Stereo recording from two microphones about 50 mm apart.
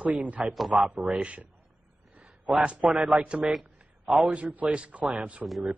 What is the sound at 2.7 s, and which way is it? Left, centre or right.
Speech, right.